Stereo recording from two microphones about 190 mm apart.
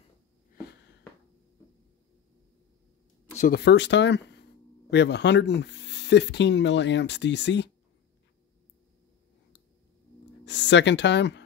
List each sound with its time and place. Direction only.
3.3 s speech: 50° left (ahead or behind); by 7.7 s 70° left (ahead or behind)
10.4 s speech: 70° left (ahead or behind)